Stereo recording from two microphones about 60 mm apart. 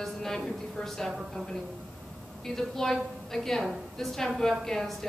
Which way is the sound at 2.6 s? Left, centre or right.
Centre.